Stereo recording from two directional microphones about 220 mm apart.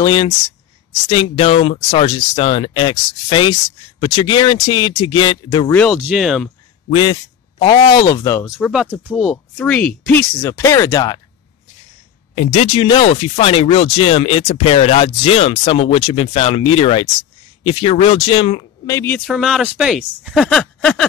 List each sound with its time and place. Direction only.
0.0 s speech: 20° left (ahead or behind)
5.7 s speech: 5° left (ahead or behind)
6.9 s speech: 25° left (ahead or behind)
8.5 s speech: centre (ahead or behind); by 11.1 s 15° left (ahead or behind)
12.4 s speech: 25° left (ahead or behind)
18.9 s speech: 10° left (ahead or behind)
19.2 s speech: centre (ahead or behind)